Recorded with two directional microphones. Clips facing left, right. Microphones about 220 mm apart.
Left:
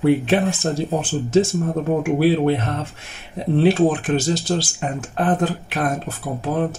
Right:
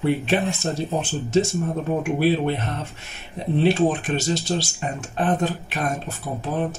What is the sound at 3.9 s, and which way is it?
Speech, 50° left (ahead or behind).